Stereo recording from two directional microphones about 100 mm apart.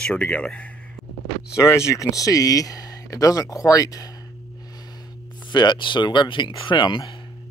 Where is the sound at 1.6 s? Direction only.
30° left (ahead or behind).